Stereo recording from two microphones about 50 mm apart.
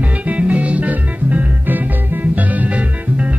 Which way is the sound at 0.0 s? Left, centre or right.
Right.